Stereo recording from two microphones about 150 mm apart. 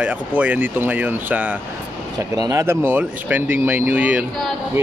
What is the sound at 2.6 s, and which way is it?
Speech, 15° right (ahead or behind).